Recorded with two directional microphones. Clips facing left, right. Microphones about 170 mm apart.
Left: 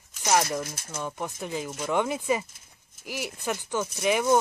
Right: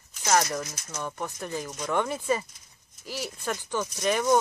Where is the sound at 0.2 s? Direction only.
15° left (ahead or behind).